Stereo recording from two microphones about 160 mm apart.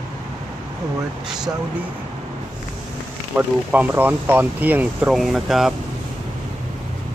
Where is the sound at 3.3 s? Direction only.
10° right (ahead or behind).